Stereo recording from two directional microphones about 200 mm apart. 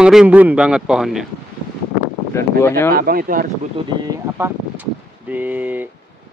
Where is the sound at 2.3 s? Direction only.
15° left (ahead or behind).